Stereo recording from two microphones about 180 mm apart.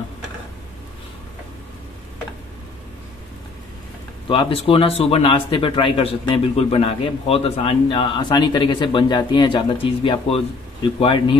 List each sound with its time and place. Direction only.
4.3 s speech: 30° left (ahead or behind)